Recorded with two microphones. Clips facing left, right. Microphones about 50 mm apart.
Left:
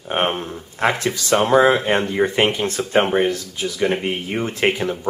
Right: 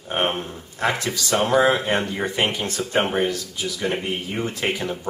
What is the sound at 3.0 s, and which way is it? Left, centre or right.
Speech, centre.